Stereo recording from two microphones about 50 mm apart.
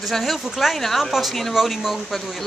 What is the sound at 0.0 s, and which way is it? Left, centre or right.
Speech, centre.